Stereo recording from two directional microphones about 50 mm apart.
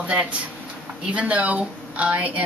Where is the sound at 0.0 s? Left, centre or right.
Right.